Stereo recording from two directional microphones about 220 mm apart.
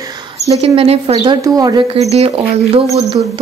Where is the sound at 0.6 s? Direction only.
25° right (ahead or behind).